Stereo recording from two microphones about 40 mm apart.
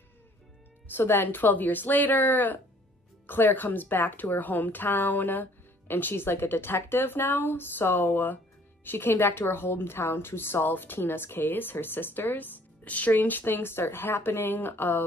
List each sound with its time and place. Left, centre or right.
0.9 s a woman's voice: left
8.8 s a woman's voice: left